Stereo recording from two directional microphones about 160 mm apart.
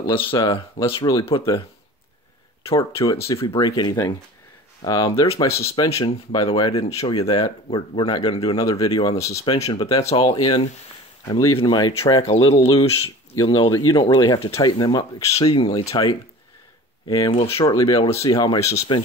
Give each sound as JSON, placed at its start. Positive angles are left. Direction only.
{"t": 0.0, "sound": "speech", "side_deg": 35}
{"t": 3.3, "sound": "speech", "side_deg": 25}
{"t": 5.6, "sound": "speech", "side_deg": 40}
{"t": 6.9, "sound": "speech", "side_deg": 40}
{"t": 7.2, "sound": "speech", "side_deg": 25}
{"t": 9.9, "sound": "speech", "side_deg": 35}
{"t": 15.4, "sound": "speech", "side_deg": 35}
{"t": 17.1, "sound": "speech", "side_deg": 20}
{"t": 17.4, "sound": "speech", "side_deg": 35}
{"t": 17.7, "sound": "speech", "side_deg": 25}